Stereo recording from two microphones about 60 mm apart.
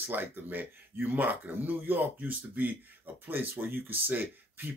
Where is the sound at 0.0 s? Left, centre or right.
Right.